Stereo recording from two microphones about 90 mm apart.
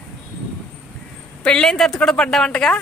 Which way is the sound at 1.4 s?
10° left (ahead or behind).